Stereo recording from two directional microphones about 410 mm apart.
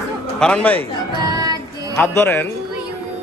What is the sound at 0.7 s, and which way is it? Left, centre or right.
Music, centre.